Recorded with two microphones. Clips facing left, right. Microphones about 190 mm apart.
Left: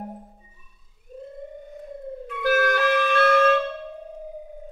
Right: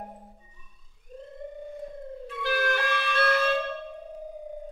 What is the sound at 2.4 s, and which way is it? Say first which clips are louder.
Music: left 7 dB; 45° left (ahead or behind).